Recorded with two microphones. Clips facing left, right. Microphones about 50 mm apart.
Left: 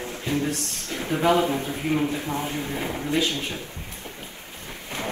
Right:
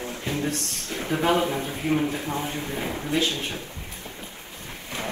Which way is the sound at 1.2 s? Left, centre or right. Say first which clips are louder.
Left 3 dB; left.